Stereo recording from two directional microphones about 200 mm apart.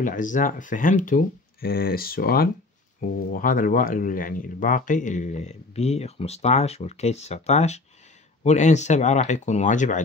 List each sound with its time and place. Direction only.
0.0 s speech: 40° left (ahead or behind)